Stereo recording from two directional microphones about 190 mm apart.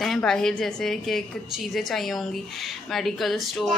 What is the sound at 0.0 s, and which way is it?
A woman's voice, centre (ahead or behind).